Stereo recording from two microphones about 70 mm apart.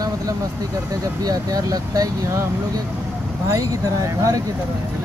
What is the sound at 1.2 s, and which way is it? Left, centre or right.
Speech, right.